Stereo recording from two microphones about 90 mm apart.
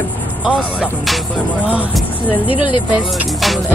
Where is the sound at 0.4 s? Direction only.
10° right (ahead or behind).